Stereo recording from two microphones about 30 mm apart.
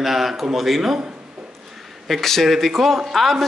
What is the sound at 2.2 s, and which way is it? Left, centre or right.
Speech, centre.